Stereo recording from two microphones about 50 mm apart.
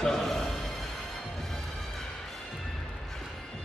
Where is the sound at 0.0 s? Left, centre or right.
Centre.